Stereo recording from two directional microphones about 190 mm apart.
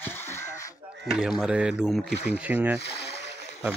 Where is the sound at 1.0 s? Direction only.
5° right (ahead or behind).